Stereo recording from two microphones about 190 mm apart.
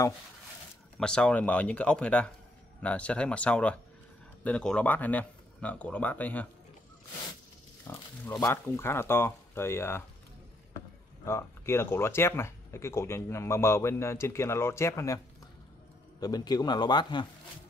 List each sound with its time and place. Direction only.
0.9 s speech: 5° left (ahead or behind)
7.8 s speech: 10° left (ahead or behind)
11.2 s speech: 15° left (ahead or behind)
16.2 s a man's voice: 20° left (ahead or behind)